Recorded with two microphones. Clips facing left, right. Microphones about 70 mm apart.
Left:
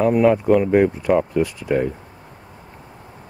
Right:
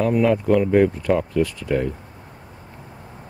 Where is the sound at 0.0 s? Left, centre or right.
Centre.